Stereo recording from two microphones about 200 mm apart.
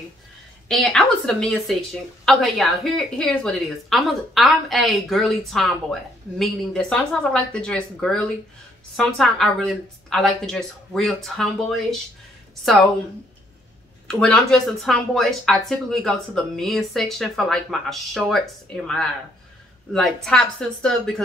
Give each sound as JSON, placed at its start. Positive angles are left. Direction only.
{"t": 0.7, "sound": "a woman's voice", "side_deg": 0}
{"t": 14.0, "sound": "a woman's voice", "side_deg": 5}
{"t": 20.2, "sound": "a woman's voice", "side_deg": 5}